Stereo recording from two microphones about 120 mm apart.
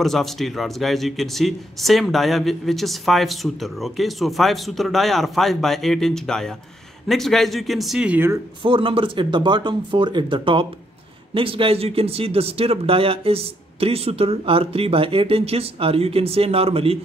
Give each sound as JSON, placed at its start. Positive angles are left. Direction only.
{"t": 0.0, "sound": "speech", "side_deg": 0}
{"t": 8.6, "sound": "speech", "side_deg": -45}